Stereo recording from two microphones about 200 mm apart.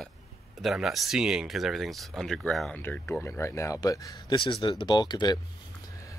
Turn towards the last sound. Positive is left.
turn(degrees=20)  # may be behind; listen again after turning